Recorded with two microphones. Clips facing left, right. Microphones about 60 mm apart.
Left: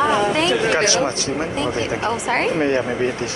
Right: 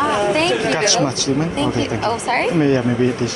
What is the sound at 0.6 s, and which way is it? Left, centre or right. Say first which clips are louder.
Speech: right 1 dB; left.